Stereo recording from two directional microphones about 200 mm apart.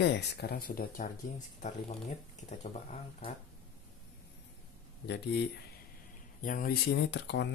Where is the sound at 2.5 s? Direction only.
35° left (ahead or behind).